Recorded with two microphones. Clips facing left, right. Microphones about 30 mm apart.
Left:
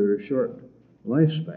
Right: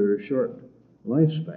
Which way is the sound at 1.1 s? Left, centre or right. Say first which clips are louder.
Even; left.